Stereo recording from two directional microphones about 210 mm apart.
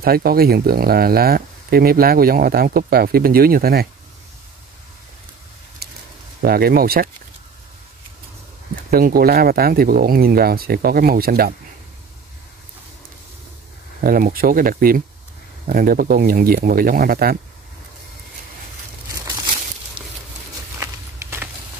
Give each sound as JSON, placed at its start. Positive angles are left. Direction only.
{"t": 0.0, "sound": "speech", "side_deg": -45}
{"t": 5.8, "sound": "a sound", "side_deg": -45}
{"t": 6.4, "sound": "speech", "side_deg": -45}
{"t": 8.9, "sound": "speech", "side_deg": -45}
{"t": 14.0, "sound": "speech", "side_deg": -45}
{"t": 20.8, "sound": "walk", "side_deg": -10}